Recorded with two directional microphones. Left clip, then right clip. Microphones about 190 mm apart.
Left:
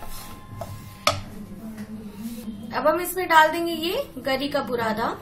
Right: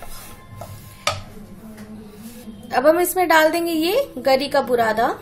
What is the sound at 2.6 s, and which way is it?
A woman's voice, 45° right (ahead or behind).